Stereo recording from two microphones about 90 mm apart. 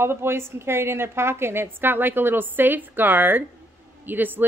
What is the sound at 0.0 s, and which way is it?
Speech, 25° right (ahead or behind).